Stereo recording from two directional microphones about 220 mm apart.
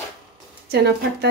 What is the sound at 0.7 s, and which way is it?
Speech, 45° right (ahead or behind).